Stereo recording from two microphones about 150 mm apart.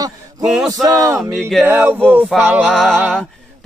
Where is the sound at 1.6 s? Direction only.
10° right (ahead or behind).